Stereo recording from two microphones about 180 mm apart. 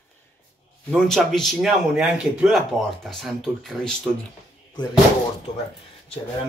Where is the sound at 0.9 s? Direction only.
5° left (ahead or behind).